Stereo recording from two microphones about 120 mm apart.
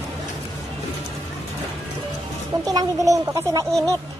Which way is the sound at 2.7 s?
30° right (ahead or behind).